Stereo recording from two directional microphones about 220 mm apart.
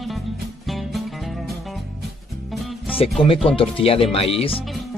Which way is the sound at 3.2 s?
25° left (ahead or behind).